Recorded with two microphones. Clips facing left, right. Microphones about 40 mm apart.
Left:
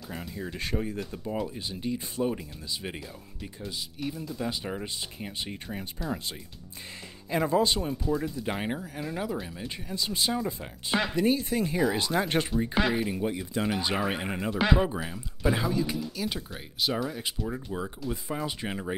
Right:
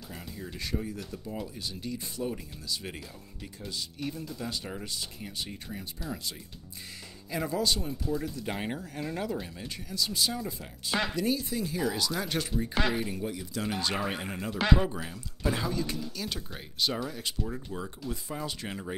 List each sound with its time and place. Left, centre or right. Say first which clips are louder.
0.6 s speech: left 3 dB; left
3.6 s speech: left 1 dB; centre
4.4 s speech: left 4 dB; centre
7.2 s speech: left 5 dB; left
8.0 s speech: left 3 dB; centre
9.8 s speech: left 1 dB; left
11.1 s speech: left 4 dB; left
12.7 s speech: left 2 dB; centre
13.2 s speech: left 5 dB; left
13.7 s speech: left 2 dB; centre
14.5 s speech: left 1 dB; centre